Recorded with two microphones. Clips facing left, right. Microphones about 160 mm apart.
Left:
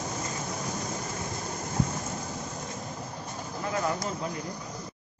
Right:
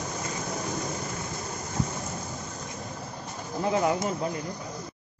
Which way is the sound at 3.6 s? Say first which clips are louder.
Right 5 dB; 20° right (ahead or behind).